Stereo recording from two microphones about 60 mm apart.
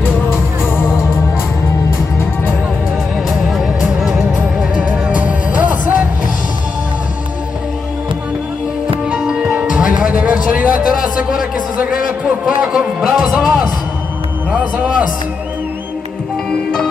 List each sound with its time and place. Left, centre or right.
3.3 s music: centre
4.6 s music: centre
9.1 s music: centre
11.9 s a sound: centre
13.0 s music: centre
14.5 s music: centre